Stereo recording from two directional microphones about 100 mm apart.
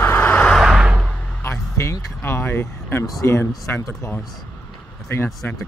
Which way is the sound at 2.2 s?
20° left (ahead or behind).